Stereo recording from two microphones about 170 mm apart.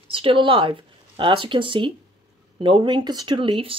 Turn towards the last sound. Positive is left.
turn(degrees=-30)  # may be behind; listen again after turning